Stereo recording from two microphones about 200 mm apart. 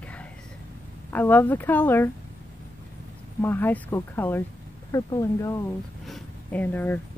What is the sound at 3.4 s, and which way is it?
Speech, 10° left (ahead or behind).